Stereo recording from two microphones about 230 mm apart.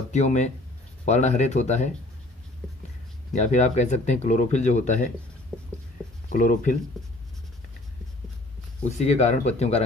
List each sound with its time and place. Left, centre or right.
0.1 s speech: left
3.3 s speech: left
5.5 s writing: centre
6.2 s speech: left
8.9 s speech: left